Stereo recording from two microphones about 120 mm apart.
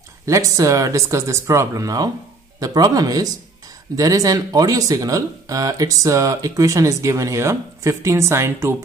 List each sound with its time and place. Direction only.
0.2 s speech: 25° right (ahead or behind)